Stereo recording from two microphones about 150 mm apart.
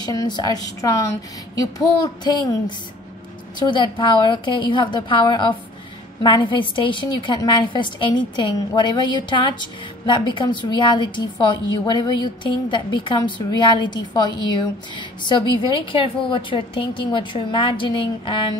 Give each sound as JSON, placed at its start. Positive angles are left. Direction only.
{"t": 0.0, "sound": "speech", "side_deg": 25}
{"t": 2.2, "sound": "a woman's voice", "side_deg": 25}